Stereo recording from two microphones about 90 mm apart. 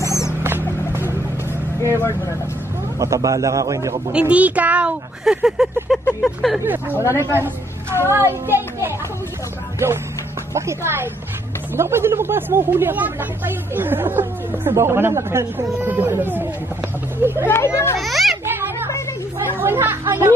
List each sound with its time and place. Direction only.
0.0 s rodents: 35° left (ahead or behind)
0.4 s rodents: 25° right (ahead or behind)
2.0 s speech: 30° left (ahead or behind)
3.0 s a man's voice: 40° right (ahead or behind)
4.1 s a child's voice: 15° right (ahead or behind)
5.2 s a sound: 5° right (ahead or behind)
7.3 s a child's voice: 30° right (ahead or behind)
17.5 s speech: 30° left (ahead or behind)
17.9 s a sound: centre (ahead or behind)
19.5 s speech: 25° right (ahead or behind)